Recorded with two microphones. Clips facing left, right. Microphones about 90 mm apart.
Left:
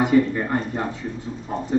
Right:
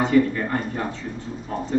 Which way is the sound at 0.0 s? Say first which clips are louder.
Left 1 dB; 15° left (ahead or behind).